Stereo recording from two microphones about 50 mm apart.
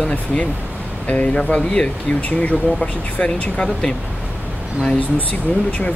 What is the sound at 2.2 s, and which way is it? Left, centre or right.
Speech, left.